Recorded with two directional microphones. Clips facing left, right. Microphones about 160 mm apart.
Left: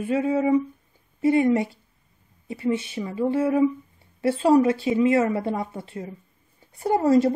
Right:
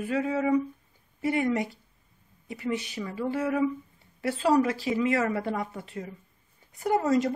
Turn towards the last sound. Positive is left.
turn(degrees=30)  # may be behind; listen again after turning